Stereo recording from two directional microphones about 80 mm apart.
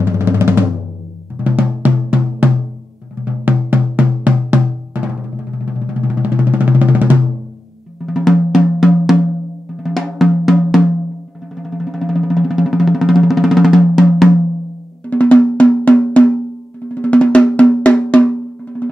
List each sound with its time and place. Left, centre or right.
0.0 s drum: right
3.3 s drum: right
8.0 s drum: centre
11.5 s music: centre
15.0 s drum: centre